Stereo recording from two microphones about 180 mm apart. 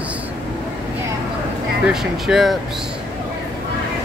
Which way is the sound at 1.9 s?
Centre (ahead or behind).